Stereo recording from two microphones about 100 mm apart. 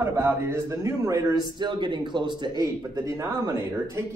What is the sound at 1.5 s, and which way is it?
Speech, 50° right (ahead or behind).